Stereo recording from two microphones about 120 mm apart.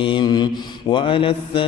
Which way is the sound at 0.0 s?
40° left (ahead or behind).